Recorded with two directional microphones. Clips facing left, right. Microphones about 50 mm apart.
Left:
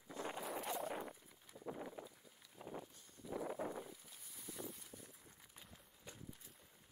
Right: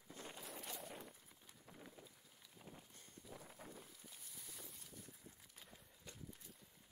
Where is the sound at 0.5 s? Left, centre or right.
Centre.